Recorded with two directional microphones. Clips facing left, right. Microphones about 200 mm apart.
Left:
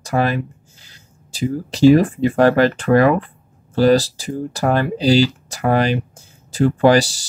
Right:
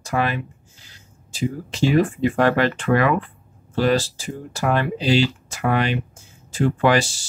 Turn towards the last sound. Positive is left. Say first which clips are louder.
# left 5 dB
turn(degrees=35)  # may be behind; listen again after turning